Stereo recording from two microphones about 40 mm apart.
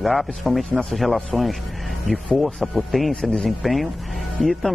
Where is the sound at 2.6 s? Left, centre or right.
Centre.